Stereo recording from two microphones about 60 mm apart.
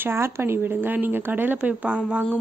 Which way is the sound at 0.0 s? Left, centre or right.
Right.